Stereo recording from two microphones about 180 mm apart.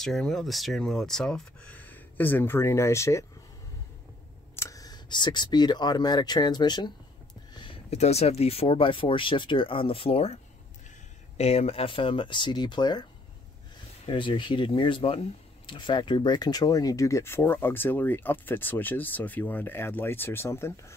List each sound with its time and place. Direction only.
0.0 s speech: centre (ahead or behind)
4.6 s speech: 20° left (ahead or behind)
14.0 s speech: 25° left (ahead or behind)